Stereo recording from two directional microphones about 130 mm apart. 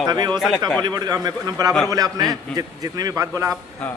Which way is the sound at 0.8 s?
30° right (ahead or behind).